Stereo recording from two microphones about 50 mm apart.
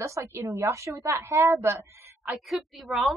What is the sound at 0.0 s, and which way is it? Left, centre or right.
A woman's voice, right.